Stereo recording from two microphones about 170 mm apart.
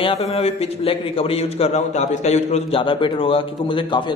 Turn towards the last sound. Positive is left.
turn(degrees=30)  # may be behind; listen again after turning